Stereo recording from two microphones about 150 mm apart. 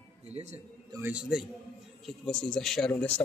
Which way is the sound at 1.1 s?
5° right (ahead or behind).